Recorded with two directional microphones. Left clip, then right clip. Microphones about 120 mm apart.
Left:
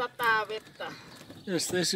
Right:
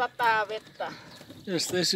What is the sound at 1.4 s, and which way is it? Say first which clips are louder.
Speech: right 2 dB; 10° right (ahead or behind).